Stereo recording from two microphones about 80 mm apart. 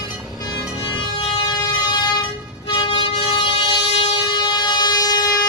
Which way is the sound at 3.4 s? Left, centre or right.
Left.